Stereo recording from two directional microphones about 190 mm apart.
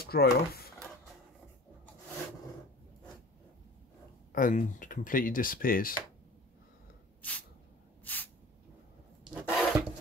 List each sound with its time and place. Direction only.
0.0 s speech: 55° left (ahead or behind)
4.3 s speech: 45° left (ahead or behind)
7.2 s a sound: 10° left (ahead or behind)
9.2 s rub: centre (ahead or behind)